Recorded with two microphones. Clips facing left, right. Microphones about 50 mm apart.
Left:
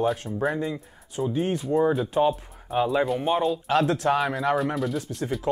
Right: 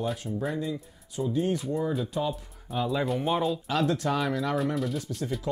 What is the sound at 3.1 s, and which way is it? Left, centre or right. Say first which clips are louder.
Speech: left 3 dB; centre.